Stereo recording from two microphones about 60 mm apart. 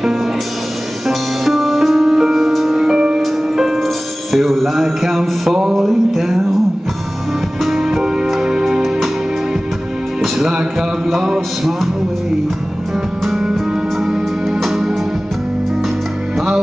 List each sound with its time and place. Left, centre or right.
1.0 s music: centre
7.6 s music: centre
10.2 s music: centre